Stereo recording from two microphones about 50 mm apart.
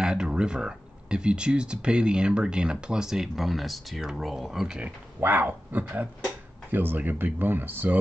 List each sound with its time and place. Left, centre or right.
0.0 s speech: centre
5.2 s speech: right